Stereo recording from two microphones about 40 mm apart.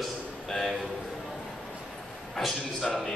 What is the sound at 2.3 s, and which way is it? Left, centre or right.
Speech, centre.